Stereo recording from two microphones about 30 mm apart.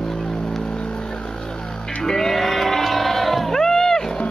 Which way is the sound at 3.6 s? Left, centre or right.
Centre.